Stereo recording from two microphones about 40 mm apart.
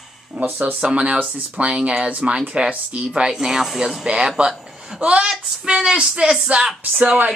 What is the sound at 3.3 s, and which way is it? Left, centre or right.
Speech, centre.